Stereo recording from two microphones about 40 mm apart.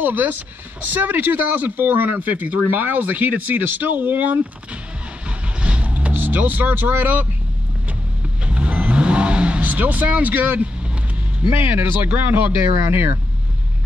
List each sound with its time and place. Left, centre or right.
0.0 s speech: right
2.1 s speech: right
5.6 s vehicle: right
8.5 s vehicle: right
9.7 s speech: right
11.5 s speech: right